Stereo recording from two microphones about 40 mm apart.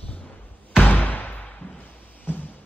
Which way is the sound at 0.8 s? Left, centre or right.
Left.